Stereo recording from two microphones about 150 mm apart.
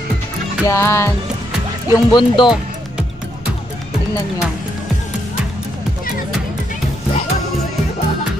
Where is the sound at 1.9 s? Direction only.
30° left (ahead or behind).